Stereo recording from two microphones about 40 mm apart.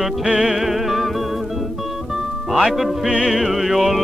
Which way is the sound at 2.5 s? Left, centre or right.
Centre.